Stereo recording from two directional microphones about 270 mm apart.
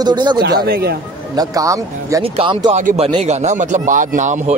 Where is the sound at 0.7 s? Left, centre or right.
Right.